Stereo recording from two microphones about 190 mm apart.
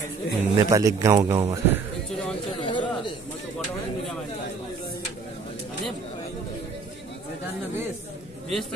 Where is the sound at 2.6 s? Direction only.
25° left (ahead or behind).